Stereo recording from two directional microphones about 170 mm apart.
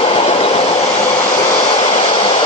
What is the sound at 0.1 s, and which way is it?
Train, 35° left (ahead or behind).